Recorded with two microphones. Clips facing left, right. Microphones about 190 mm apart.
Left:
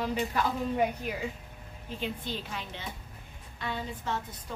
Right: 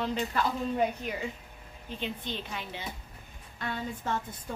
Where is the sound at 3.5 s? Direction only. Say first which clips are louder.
Right 1 dB; 50° right (ahead or behind).